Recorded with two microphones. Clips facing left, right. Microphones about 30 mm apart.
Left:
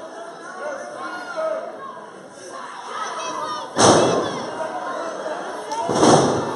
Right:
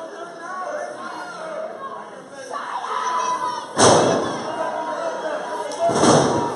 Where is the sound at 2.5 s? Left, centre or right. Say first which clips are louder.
Right 5 dB; centre.